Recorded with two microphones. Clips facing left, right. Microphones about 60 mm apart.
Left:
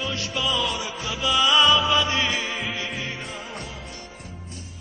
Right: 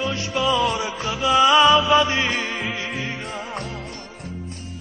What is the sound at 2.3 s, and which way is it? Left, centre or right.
Music, right.